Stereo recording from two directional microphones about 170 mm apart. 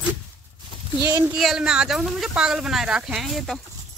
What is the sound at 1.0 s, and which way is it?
Speech, 15° right (ahead or behind).